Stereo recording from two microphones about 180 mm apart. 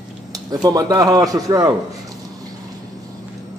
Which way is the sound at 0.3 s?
20° right (ahead or behind).